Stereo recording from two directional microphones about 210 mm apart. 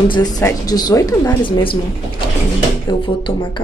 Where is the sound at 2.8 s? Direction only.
25° left (ahead or behind).